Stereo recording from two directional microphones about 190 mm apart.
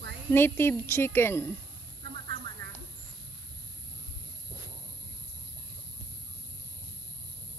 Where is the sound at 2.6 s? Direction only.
55° right (ahead or behind).